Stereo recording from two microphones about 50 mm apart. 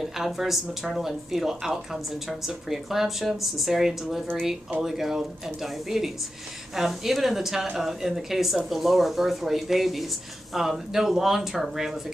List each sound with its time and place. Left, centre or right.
0.0 s speech: centre